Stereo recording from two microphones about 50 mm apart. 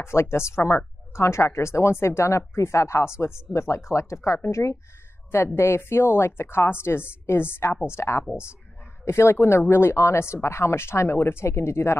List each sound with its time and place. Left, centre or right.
0.0 s speech: left
5.3 s speech: left